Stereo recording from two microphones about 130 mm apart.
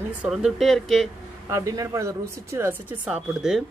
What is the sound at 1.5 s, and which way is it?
Speech, 25° right (ahead or behind).